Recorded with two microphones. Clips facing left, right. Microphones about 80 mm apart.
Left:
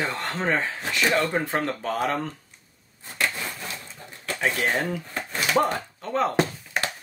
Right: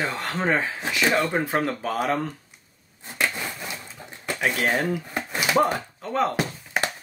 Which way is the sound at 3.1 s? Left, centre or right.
Centre.